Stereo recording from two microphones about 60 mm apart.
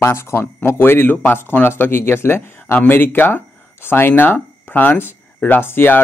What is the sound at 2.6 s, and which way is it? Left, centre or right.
Speech, left.